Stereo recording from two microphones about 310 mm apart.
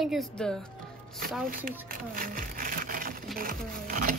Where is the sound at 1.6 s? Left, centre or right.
Right.